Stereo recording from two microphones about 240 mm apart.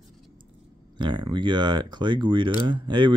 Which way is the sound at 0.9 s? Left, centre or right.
Centre.